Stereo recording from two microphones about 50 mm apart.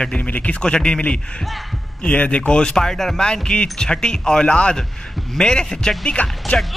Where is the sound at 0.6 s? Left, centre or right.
Centre.